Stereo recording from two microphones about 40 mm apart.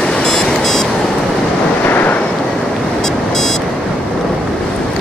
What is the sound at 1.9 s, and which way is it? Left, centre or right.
Vehicle, left.